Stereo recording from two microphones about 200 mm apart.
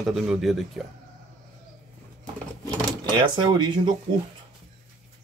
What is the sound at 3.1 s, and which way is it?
Speech, 20° right (ahead or behind).